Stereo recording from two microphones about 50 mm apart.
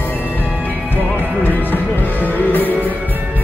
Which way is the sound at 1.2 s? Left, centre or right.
Left.